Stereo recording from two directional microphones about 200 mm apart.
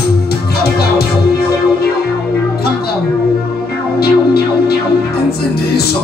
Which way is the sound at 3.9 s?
50° left (ahead or behind).